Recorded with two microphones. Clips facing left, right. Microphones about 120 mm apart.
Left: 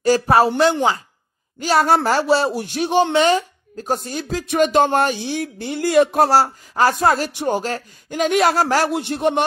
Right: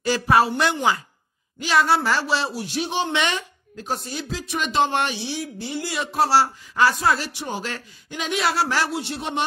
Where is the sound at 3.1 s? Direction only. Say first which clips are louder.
Left 9 dB; 40° left (ahead or behind).